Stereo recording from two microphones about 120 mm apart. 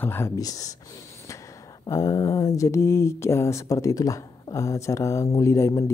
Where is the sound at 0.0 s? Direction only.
20° left (ahead or behind).